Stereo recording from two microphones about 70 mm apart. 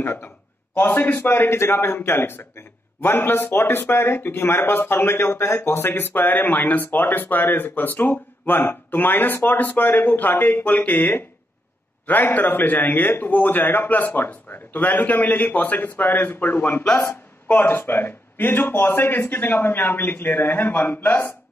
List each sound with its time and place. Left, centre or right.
0.0 s a man's voice: left